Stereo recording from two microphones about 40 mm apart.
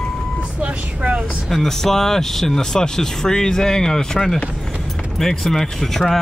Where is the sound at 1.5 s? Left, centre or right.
Centre.